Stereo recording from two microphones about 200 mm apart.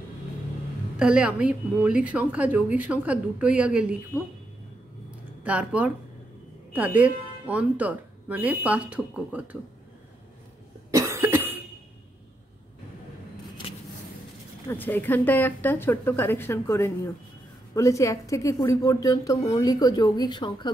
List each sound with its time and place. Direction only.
0.9 s a woman's voice: 5° right (ahead or behind)
5.4 s speech: 5° right (ahead or behind)
10.9 s cough: 15° right (ahead or behind)
14.7 s a woman's voice: 10° left (ahead or behind)